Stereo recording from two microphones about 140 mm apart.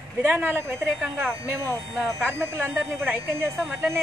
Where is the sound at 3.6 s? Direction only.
Centre (ahead or behind).